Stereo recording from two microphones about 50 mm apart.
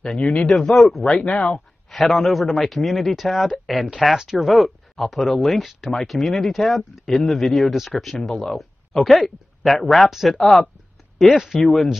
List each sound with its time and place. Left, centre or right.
0.2 s speech: left
0.5 s speech: centre
1.0 s speech: left
1.5 s speech: centre